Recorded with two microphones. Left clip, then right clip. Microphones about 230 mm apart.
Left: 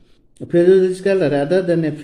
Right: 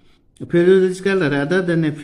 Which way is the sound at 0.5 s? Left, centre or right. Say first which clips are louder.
Left 1 dB; centre.